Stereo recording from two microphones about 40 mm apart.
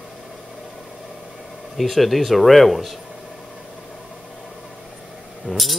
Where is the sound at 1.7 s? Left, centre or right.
Centre.